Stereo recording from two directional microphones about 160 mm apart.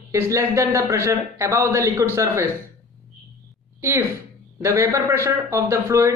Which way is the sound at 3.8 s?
15° right (ahead or behind).